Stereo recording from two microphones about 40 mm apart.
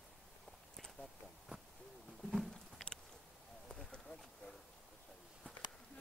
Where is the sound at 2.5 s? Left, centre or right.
Centre.